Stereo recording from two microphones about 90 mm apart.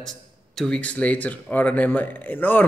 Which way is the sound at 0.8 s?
15° left (ahead or behind).